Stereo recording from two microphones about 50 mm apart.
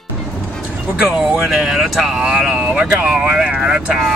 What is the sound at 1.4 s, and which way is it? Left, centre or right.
Speech, centre.